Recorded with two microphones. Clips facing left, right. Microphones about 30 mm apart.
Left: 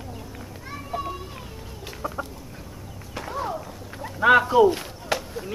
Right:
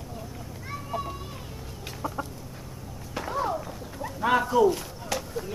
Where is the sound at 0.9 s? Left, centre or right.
Left.